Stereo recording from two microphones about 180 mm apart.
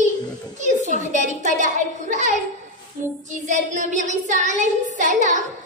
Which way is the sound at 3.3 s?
40° right (ahead or behind).